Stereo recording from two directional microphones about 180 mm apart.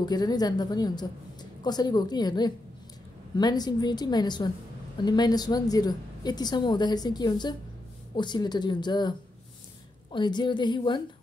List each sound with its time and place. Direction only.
0.0 s a woman's voice: 20° left (ahead or behind)
10.1 s a woman's voice: 25° left (ahead or behind)